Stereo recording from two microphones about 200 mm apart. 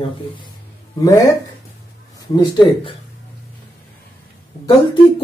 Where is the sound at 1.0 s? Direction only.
15° left (ahead or behind).